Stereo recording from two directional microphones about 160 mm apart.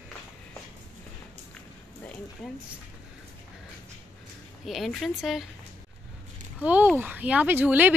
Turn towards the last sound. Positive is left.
turn(degrees=-10)  # may be behind; listen again after turning